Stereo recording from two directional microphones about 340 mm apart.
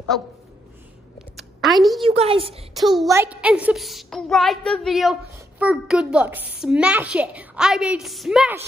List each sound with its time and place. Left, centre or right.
1.6 s a woman's voice: centre
2.0 s a woman's voice: centre
2.7 s a child's voice: centre